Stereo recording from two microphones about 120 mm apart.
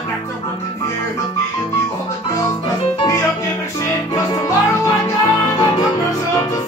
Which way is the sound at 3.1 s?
25° left (ahead or behind).